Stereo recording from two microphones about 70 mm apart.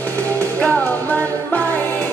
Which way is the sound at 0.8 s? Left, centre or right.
Left.